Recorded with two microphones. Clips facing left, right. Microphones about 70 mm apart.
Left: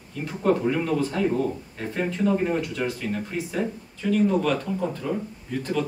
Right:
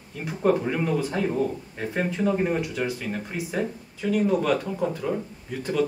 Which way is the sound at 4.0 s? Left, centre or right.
Centre.